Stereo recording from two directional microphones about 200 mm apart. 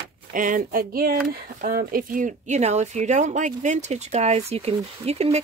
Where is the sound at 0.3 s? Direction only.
40° right (ahead or behind).